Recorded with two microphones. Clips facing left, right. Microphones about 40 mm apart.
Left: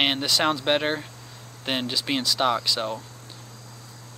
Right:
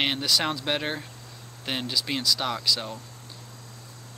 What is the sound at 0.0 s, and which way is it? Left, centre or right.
Speech, centre.